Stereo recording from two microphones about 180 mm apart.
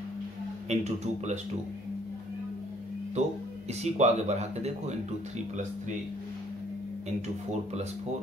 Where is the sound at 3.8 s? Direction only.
40° right (ahead or behind).